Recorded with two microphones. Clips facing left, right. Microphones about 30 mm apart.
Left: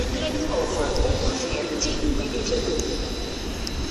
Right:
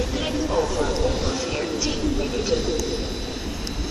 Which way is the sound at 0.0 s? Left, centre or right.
Centre.